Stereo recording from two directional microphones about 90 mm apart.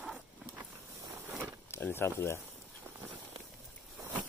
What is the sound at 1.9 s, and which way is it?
Speech, 30° left (ahead or behind).